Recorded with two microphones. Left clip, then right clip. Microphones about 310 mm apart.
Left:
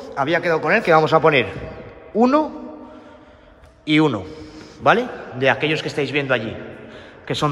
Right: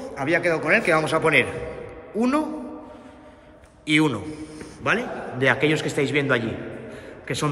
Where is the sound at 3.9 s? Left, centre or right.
Centre.